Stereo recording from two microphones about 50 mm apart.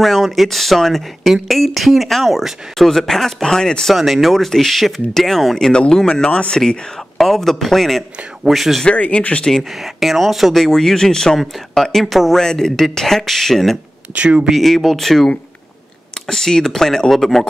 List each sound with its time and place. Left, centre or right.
0.0 s speech: centre
3.9 s speech: centre
5.7 s speech: centre
8.8 s speech: left
9.6 s speech: centre
12.4 s speech: centre
14.1 s speech: right
14.5 s speech: centre